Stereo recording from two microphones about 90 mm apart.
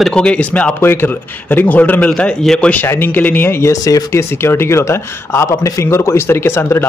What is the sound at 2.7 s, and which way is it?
Speech, 25° left (ahead or behind).